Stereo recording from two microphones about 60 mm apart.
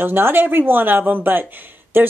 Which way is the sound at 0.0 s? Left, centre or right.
Right.